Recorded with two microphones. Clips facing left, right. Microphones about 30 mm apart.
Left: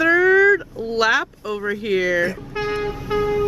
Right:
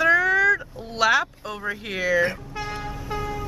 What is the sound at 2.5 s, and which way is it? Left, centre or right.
Vehicle, left.